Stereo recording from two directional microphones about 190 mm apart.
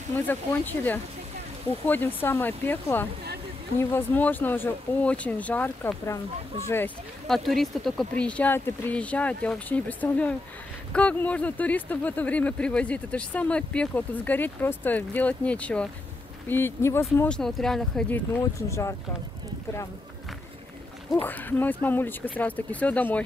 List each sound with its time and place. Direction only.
0.1 s speech: 10° left (ahead or behind)
18.4 s speech: 15° left (ahead or behind)
21.1 s speech: 10° left (ahead or behind)